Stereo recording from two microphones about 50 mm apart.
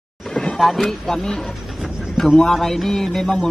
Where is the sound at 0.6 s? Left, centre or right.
Centre.